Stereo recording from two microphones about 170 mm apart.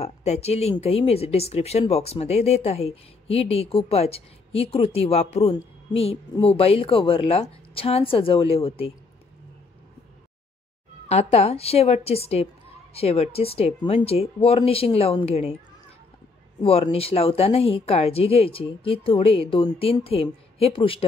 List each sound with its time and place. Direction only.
0.0 s speech: 40° left (ahead or behind)
5.9 s a sound: 35° left (ahead or behind)
6.4 s speech: 35° left (ahead or behind)
11.1 s speech: 40° left (ahead or behind)
16.6 s speech: 35° left (ahead or behind)